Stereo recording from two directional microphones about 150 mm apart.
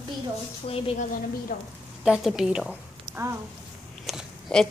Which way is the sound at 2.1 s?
5° right (ahead or behind).